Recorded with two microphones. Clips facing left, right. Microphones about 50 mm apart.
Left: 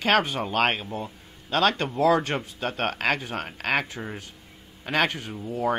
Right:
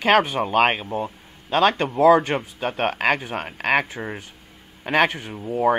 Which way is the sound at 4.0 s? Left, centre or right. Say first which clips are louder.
Right 4 dB; right.